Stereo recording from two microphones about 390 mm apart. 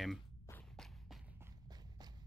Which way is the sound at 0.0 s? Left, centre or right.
Centre.